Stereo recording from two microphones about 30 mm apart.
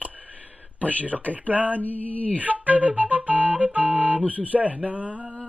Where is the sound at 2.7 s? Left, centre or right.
Right.